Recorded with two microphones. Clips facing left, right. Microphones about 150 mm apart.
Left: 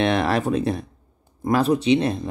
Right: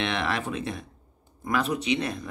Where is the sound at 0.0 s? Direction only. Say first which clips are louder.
Left 8 dB; 40° left (ahead or behind).